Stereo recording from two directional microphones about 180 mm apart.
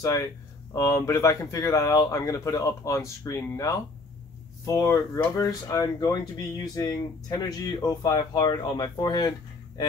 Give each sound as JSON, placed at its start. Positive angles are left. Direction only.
{"t": 0.7, "sound": "speech", "side_deg": 15}